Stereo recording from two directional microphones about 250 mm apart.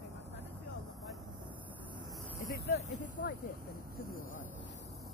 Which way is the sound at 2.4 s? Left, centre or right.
Left.